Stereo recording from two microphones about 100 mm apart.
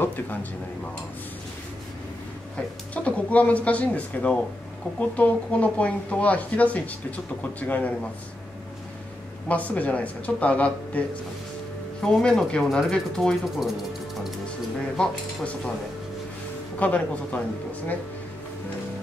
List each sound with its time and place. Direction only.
0.0 s speech: 20° left (ahead or behind)
2.5 s speech: 10° left (ahead or behind)
9.5 s speech: 15° left (ahead or behind)
15.0 s speech: 10° left (ahead or behind)
16.8 s speech: 15° left (ahead or behind)